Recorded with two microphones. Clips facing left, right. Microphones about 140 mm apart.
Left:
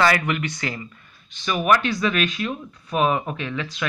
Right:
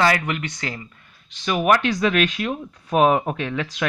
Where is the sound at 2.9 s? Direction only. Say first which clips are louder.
Right 4 dB; 60° right (ahead or behind).